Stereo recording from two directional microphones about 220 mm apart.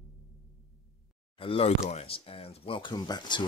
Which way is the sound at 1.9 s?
25° left (ahead or behind).